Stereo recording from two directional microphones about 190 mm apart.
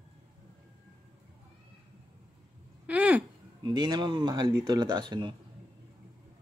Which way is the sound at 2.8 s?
5° right (ahead or behind).